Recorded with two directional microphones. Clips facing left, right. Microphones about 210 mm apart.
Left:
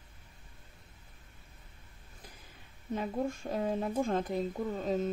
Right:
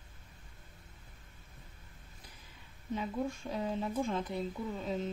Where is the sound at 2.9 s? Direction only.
50° left (ahead or behind).